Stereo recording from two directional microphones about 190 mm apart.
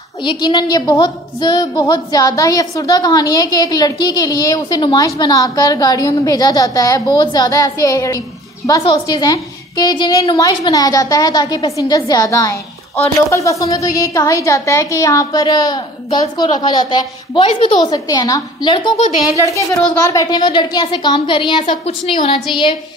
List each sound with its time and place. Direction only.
0.2 s a woman's voice: 25° left (ahead or behind)